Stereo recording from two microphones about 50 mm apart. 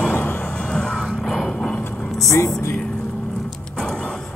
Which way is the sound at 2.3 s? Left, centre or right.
Left.